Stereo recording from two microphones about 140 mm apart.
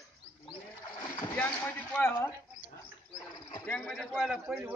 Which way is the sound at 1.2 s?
10° left (ahead or behind).